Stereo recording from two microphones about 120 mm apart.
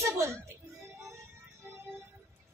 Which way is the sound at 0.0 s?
25° right (ahead or behind).